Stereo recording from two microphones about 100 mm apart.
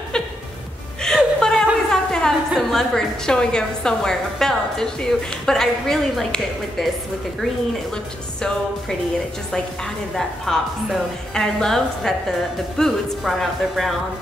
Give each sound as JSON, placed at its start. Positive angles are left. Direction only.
{"t": 1.0, "sound": "music", "side_deg": 5}
{"t": 1.9, "sound": "a woman's voice", "side_deg": 5}
{"t": 10.1, "sound": "a woman's voice", "side_deg": 5}